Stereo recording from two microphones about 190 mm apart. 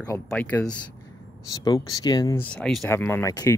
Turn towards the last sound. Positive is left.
turn(degrees=20)  # may be behind; listen again after turning